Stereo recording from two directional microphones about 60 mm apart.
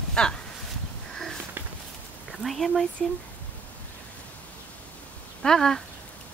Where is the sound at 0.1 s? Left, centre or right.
Centre.